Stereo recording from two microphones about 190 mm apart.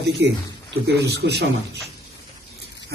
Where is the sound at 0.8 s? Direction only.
60° right (ahead or behind).